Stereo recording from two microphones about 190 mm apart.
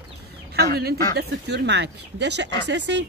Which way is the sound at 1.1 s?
65° right (ahead or behind).